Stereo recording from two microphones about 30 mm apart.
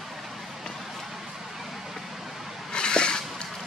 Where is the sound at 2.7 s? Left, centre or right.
Left.